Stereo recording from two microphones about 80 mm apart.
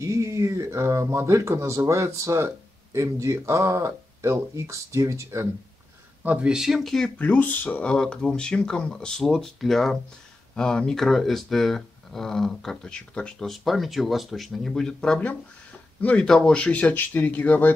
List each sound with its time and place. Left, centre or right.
0.0 s speech: right
6.2 s speech: centre
7.2 s speech: left
13.5 s speech: centre; by 17.7 s left